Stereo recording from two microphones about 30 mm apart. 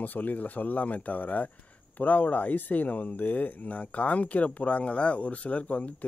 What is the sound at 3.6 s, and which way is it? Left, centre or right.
Speech, left.